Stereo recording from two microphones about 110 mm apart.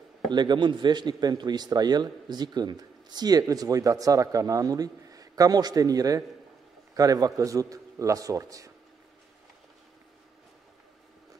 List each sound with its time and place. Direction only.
0.3 s speech: 45° right (ahead or behind)